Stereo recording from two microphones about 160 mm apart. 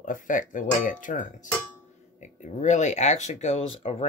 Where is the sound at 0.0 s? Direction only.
55° left (ahead or behind).